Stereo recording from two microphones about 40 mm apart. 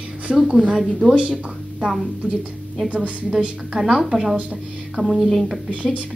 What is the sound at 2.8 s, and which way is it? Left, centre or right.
Speech, right.